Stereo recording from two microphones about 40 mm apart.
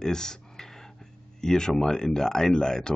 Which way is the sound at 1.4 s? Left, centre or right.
Centre.